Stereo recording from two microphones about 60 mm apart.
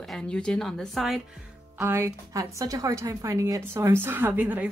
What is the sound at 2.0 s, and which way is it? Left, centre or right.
A woman's voice, right.